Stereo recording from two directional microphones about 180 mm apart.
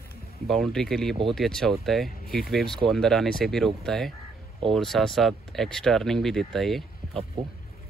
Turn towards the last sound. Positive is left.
turn(degrees=0)  # may be behind; listen again after turning